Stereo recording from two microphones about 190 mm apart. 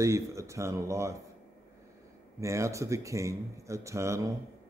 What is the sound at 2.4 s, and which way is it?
Speech, 15° right (ahead or behind).